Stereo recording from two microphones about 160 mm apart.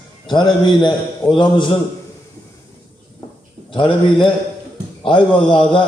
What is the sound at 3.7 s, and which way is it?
A man's voice, 30° left (ahead or behind).